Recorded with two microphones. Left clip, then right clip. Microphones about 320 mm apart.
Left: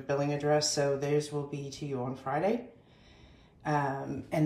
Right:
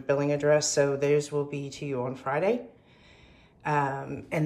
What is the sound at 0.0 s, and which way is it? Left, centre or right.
Speech, centre.